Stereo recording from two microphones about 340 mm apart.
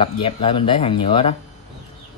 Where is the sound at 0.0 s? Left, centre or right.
Centre.